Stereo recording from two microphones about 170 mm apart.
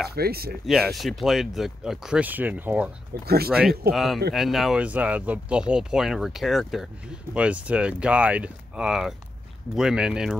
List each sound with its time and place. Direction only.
0.1 s speech: 65° right (ahead or behind)
0.7 s speech: centre (ahead or behind)
3.1 s speech: 65° right (ahead or behind)
3.5 s speech: centre (ahead or behind)